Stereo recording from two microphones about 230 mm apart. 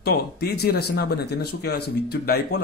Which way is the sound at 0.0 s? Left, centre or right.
Left.